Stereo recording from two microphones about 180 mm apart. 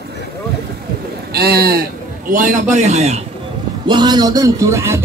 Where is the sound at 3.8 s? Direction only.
25° right (ahead or behind).